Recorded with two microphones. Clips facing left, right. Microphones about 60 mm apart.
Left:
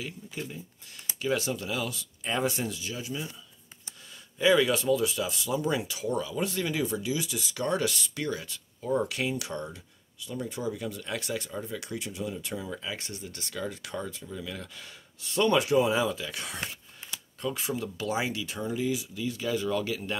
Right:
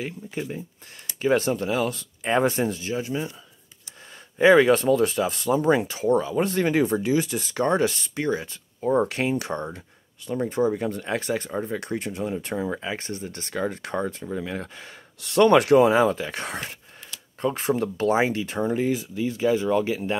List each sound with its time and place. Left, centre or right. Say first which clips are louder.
0.0 s speech: right 6 dB; right
4.4 s speech: right 7 dB; right
15.1 s speech: right 8 dB; right